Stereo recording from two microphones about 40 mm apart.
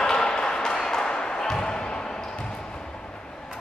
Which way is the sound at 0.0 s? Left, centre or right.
Centre.